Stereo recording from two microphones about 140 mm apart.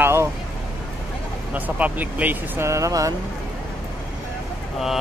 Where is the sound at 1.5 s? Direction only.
10° right (ahead or behind).